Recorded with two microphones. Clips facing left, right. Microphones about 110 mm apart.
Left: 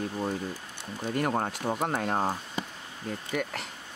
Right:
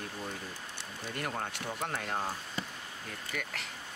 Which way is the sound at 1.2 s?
40° left (ahead or behind).